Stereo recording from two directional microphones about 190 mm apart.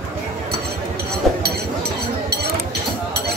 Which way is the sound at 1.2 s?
Centre (ahead or behind).